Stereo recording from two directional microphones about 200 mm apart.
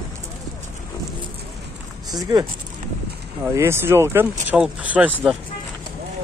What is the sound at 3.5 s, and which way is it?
Speech, 15° right (ahead or behind).